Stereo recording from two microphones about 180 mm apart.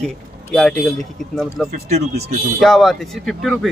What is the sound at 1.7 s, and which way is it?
Speech, 40° right (ahead or behind).